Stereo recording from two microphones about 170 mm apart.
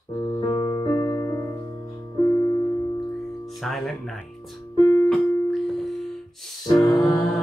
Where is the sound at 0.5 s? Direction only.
20° left (ahead or behind).